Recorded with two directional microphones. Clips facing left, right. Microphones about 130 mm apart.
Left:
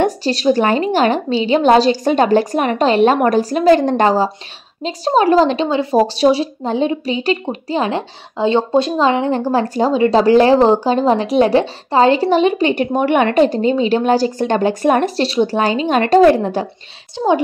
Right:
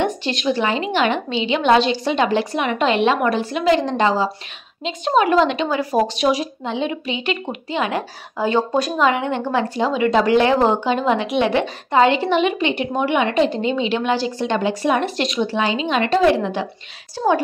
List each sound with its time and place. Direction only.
0.0 s a woman's voice: 35° left (ahead or behind)
4.8 s a woman's voice: 35° left (ahead or behind)
17.2 s a woman's voice: 15° left (ahead or behind)